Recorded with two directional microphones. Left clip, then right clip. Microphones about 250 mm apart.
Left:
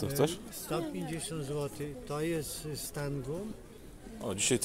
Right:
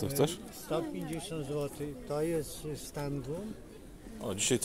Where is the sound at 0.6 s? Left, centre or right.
Left.